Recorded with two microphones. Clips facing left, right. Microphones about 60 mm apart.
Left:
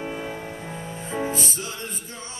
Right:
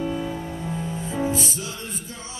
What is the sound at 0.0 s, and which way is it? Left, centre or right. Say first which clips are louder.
Music: right 4 dB; left.